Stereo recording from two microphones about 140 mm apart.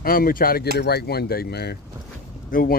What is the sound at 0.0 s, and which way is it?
Speech, 90° left.